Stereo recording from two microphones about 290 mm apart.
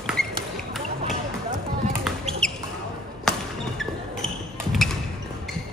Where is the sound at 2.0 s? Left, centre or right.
Centre.